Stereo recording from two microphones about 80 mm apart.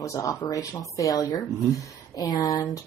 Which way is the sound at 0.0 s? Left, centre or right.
Left.